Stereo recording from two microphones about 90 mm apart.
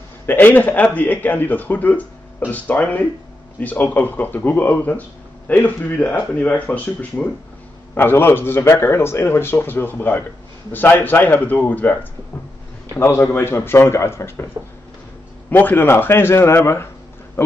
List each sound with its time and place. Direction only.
0.3 s speech: 20° left (ahead or behind)
15.5 s speech: 20° left (ahead or behind)